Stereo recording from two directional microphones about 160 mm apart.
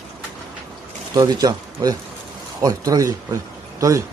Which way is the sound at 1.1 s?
25° right (ahead or behind).